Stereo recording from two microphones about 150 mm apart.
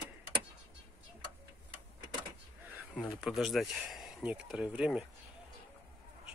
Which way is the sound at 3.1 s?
5° right (ahead or behind).